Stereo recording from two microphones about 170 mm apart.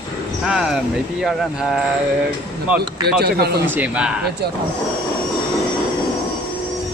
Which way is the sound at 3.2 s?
70° right (ahead or behind).